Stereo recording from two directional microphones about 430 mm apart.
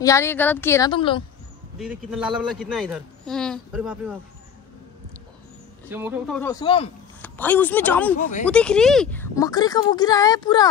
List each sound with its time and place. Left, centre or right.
0.0 s speech: centre
1.8 s a man's voice: centre
5.9 s speech: centre
8.2 s speech: centre
8.5 s speech: centre